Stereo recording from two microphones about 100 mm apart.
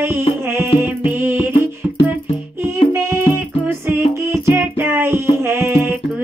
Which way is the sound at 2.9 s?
25° right (ahead or behind).